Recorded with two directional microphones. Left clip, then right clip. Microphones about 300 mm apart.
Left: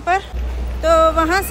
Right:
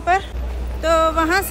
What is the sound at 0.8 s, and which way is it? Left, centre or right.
Speech, centre.